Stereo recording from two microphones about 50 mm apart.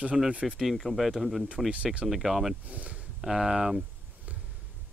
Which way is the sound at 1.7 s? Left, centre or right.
Right.